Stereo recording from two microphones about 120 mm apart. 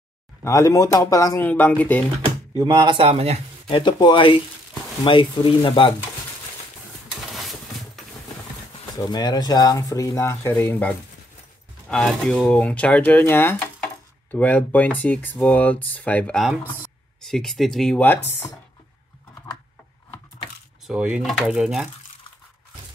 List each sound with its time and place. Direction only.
0.4 s speech: 25° left (ahead or behind)
1.4 s speech: 15° left (ahead or behind)
2.5 s speech: 35° right (ahead or behind); by 3.3 s 55° right (ahead or behind)
3.6 s speech: 45° left (ahead or behind)
7.3 s a sound: centre (ahead or behind)
8.9 s speech: 35° left (ahead or behind); by 10.9 s 15° left (ahead or behind)
11.9 s speech: 5° left (ahead or behind)
17.9 s speech: 15° left (ahead or behind)
20.8 s speech: 10° right (ahead or behind)